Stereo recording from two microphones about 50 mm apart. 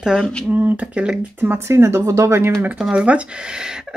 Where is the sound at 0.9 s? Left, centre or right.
Right.